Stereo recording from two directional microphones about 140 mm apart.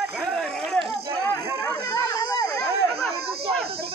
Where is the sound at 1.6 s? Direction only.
20° left (ahead or behind).